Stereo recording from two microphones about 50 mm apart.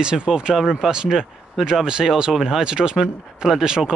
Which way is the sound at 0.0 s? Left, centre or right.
Centre.